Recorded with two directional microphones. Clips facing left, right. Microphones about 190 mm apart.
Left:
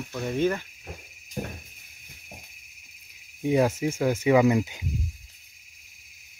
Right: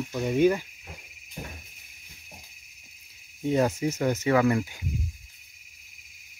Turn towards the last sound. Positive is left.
turn(degrees=20)  # may be behind; listen again after turning